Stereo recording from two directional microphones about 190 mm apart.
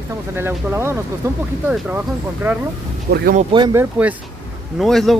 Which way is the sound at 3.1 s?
50° right (ahead or behind).